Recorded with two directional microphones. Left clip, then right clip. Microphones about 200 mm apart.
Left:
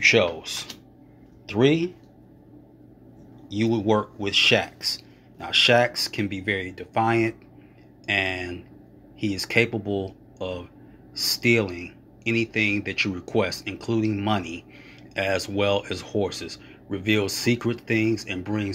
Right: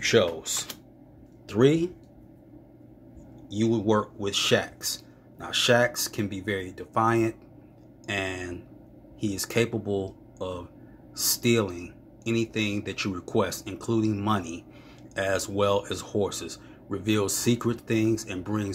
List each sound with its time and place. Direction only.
0.4 s speech: 10° right (ahead or behind)
3.4 s speech: 5° right (ahead or behind)
4.6 s speech: 50° right (ahead or behind)
5.4 s speech: 5° right (ahead or behind)